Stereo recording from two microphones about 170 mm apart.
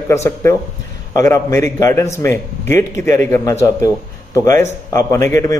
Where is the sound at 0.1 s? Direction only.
15° left (ahead or behind).